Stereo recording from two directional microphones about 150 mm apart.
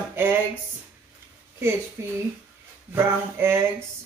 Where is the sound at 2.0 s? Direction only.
15° right (ahead or behind).